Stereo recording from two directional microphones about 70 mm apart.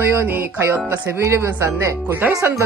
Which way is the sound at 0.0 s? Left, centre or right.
Right.